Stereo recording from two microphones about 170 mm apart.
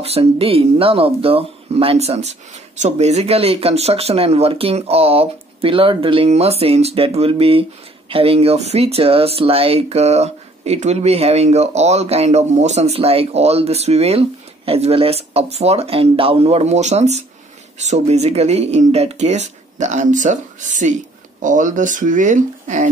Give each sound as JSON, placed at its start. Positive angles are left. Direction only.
{"t": 0.0, "sound": "speech", "side_deg": -35}